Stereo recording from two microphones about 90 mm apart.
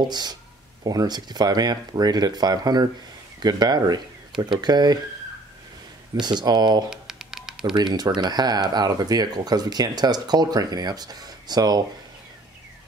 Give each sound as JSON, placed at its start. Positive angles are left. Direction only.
{"t": 0.1, "sound": "speech", "side_deg": -50}
{"t": 6.2, "sound": "speech", "side_deg": -55}
{"t": 6.9, "sound": "a sound", "side_deg": -5}
{"t": 7.7, "sound": "speech", "side_deg": -55}